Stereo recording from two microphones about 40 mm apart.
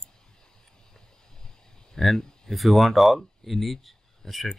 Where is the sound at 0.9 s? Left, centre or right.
Centre.